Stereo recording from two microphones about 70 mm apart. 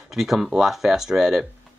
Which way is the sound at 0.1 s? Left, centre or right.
Centre.